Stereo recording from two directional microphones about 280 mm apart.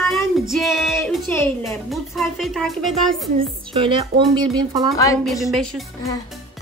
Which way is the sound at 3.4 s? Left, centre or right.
Centre.